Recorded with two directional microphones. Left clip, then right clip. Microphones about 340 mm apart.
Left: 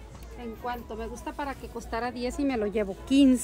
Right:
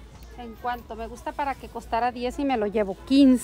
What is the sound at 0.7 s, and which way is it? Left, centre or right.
Speech, centre.